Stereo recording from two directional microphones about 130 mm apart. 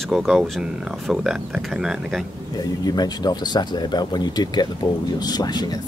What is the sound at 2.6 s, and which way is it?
Speech, 30° left (ahead or behind).